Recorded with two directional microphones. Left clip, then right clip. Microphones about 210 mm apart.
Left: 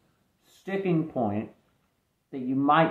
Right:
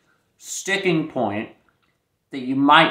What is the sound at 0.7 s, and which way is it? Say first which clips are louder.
Speech: right 7 dB; 10° right (ahead or behind).